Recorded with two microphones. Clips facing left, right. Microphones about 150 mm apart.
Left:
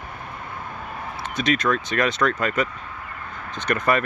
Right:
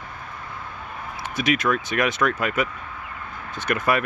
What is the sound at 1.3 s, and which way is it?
Speech, 10° right (ahead or behind).